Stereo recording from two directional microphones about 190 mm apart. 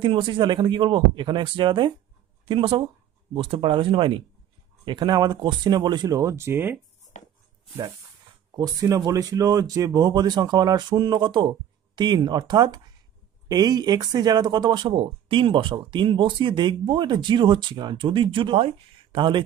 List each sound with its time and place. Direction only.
0.0 s speech: 25° right (ahead or behind)
7.1 s chopping: 40° left (ahead or behind)
8.5 s speech: 20° right (ahead or behind)